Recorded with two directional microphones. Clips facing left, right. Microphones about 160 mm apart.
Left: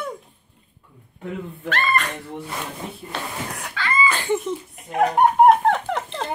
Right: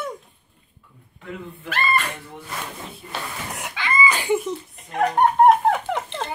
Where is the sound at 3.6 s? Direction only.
20° right (ahead or behind).